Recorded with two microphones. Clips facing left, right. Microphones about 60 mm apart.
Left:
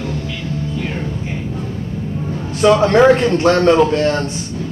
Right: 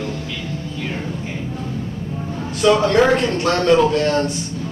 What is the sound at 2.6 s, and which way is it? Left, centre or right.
Speech, left.